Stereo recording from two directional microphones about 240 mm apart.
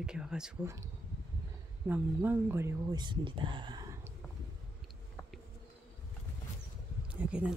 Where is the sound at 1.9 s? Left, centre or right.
Centre.